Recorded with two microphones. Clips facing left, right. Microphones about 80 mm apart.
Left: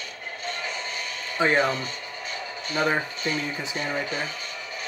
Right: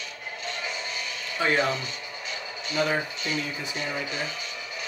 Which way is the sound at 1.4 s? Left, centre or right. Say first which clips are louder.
Left 3 dB; left.